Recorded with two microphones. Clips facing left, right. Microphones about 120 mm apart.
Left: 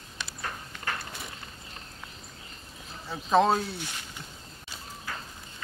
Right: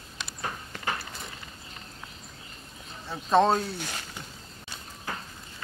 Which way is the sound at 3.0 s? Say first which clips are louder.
Right 1 dB; centre (ahead or behind).